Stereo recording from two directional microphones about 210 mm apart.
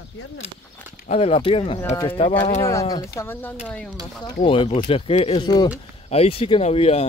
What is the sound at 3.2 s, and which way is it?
Speech, 10° left (ahead or behind).